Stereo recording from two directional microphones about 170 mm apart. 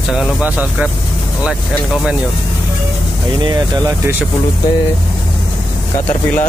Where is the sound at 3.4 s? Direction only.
20° right (ahead or behind).